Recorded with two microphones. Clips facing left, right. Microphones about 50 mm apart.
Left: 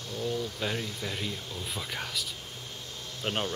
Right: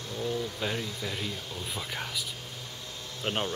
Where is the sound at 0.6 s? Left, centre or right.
Centre.